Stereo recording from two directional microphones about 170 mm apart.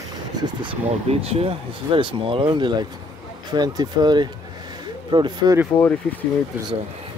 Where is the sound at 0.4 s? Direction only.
30° right (ahead or behind).